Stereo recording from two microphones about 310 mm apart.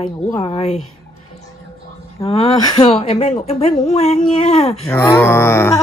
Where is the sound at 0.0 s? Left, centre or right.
Centre.